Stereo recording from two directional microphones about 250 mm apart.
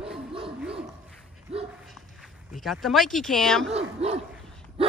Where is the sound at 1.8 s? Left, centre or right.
Centre.